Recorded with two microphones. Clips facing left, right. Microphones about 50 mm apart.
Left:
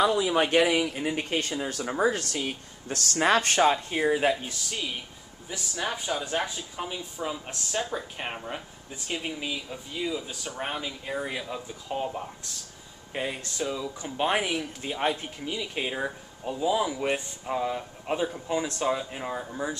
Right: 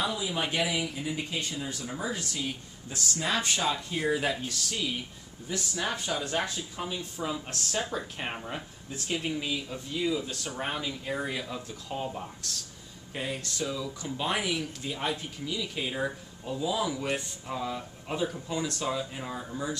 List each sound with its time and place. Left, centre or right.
0.0 s speech: left
4.1 s speech: centre